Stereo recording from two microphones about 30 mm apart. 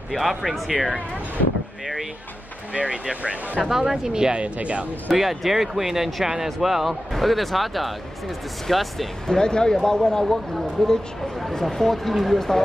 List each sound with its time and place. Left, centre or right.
0.1 s speech: centre
2.7 s speech: right
3.6 s speech: centre
4.6 s speech: right
5.2 s speech: centre
9.3 s speech: left
10.5 s speech: centre